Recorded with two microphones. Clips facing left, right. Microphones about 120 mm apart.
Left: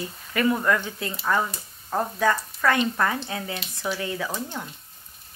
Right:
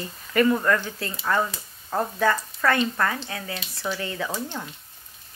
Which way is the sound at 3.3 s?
20° left (ahead or behind).